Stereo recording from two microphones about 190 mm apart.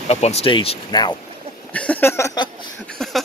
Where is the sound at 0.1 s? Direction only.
35° left (ahead or behind).